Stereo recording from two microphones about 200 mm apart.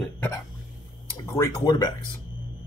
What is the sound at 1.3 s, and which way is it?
Speech, 15° left (ahead or behind).